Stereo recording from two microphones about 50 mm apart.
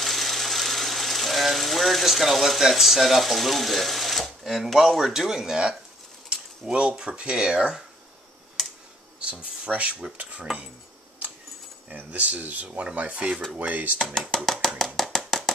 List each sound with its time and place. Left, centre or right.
0.0 s speech: centre
6.2 s bird: centre
7.0 s speech: centre
8.6 s clicking: centre
9.2 s speech: right
11.9 s speech: right
13.9 s a sound: centre